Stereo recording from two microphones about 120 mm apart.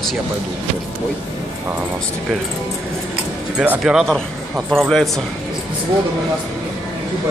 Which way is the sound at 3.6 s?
5° right (ahead or behind).